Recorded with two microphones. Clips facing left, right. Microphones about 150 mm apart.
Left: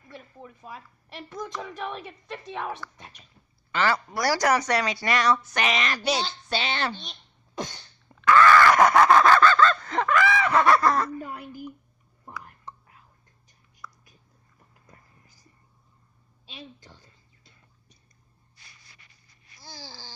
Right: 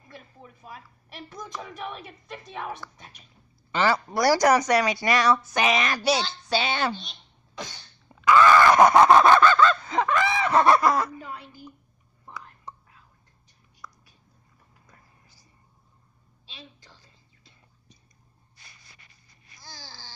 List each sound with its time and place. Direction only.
1.8 s a woman's voice: 5° right (ahead or behind)
8.1 s screaming: 10° right (ahead or behind)
10.1 s snicker: 25° right (ahead or behind)
10.8 s a sound: 10° right (ahead or behind)
13.8 s whispering: 15° right (ahead or behind)
19.8 s babbling: 10° left (ahead or behind)